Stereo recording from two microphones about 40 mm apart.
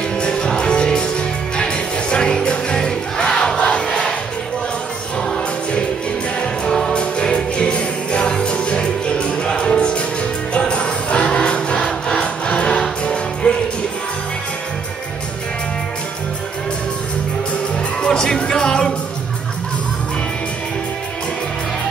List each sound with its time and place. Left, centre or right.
0.2 s music: left
6.4 s music: left
18.0 s music: centre